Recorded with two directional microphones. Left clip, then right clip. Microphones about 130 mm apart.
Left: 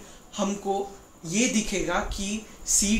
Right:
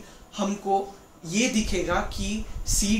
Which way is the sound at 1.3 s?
15° left (ahead or behind).